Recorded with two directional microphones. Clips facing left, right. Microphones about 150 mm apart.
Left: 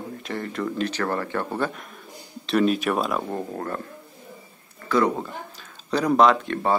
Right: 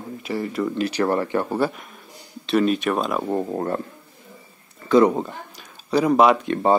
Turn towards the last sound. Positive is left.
turn(degrees=-20)  # may be behind; listen again after turning